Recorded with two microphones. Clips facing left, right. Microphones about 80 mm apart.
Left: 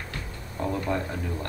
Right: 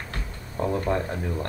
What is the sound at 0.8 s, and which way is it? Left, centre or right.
Speech, right.